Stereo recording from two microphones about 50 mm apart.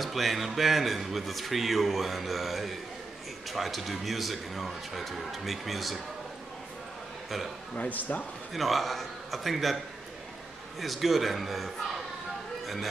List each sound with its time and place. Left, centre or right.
0.0 s speech: centre
7.9 s speech: left
8.5 s speech: centre
10.8 s speech: centre